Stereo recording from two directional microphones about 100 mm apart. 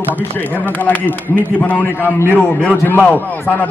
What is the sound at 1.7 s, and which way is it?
A man's voice, 20° left (ahead or behind).